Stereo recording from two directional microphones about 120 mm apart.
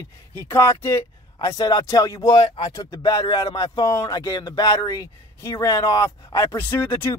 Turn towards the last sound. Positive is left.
turn(degrees=20)  # may be behind; listen again after turning